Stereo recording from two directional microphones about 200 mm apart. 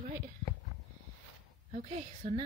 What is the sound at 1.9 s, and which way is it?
Speech, 30° right (ahead or behind).